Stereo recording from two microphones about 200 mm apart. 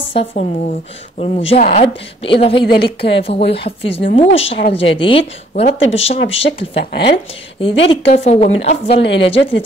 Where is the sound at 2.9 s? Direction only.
60° left (ahead or behind).